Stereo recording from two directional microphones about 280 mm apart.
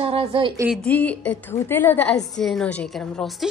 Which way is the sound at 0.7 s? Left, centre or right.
Centre.